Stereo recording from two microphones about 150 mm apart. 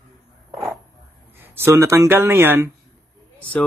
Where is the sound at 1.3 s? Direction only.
15° right (ahead or behind).